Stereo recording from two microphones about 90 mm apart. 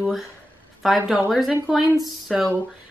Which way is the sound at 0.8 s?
Centre (ahead or behind).